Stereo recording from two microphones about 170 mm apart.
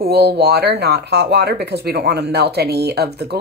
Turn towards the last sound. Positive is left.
turn(degrees=-70)  # may be behind; listen again after turning